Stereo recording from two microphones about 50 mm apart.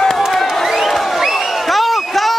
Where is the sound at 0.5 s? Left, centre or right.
Centre.